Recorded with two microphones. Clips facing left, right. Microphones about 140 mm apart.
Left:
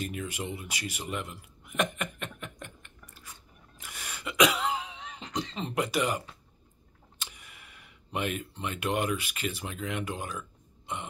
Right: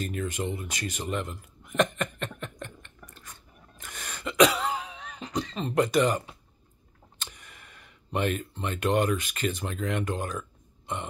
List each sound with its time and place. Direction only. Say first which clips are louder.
0.0 s speech: right 4 dB; 10° left (ahead or behind)
1.8 s a sound: right 5 dB; 10° left (ahead or behind)
3.8 s throat clearing: right 3 dB; 10° left (ahead or behind)
4.6 s music: even; 20° left (ahead or behind)
5.3 s a sound: right 3 dB; 20° left (ahead or behind)
5.8 s speech: right 6 dB; 10° left (ahead or behind)